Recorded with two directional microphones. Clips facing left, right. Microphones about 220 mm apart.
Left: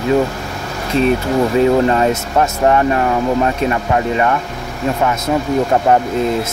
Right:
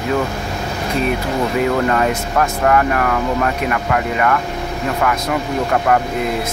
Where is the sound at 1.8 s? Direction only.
25° left (ahead or behind).